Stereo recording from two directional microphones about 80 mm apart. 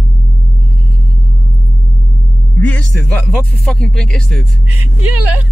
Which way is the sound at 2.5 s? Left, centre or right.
Centre.